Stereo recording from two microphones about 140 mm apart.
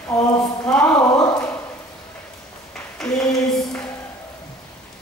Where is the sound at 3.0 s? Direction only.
Centre (ahead or behind).